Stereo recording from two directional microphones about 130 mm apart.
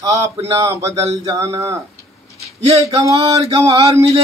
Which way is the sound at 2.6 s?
50° right (ahead or behind).